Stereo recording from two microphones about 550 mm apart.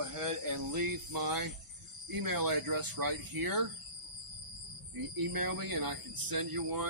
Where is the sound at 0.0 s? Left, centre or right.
Right.